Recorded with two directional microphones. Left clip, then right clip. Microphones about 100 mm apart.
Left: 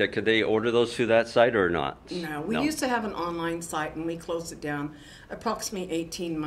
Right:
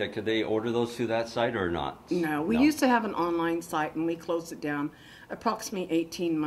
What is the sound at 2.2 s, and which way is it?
Speech, 35° left (ahead or behind).